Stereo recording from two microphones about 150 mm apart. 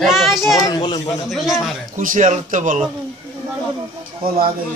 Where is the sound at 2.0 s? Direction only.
60° right (ahead or behind).